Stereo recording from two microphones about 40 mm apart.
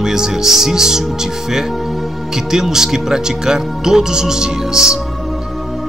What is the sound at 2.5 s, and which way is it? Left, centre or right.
Speech, centre.